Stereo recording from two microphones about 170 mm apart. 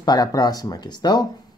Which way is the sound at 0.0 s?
20° left (ahead or behind).